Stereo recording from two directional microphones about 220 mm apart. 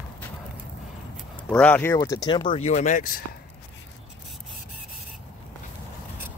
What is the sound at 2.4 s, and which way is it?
Speech, 30° left (ahead or behind).